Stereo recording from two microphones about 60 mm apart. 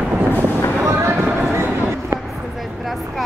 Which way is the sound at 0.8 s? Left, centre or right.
Right.